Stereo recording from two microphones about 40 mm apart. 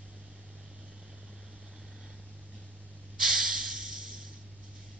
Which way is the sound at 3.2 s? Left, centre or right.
Centre.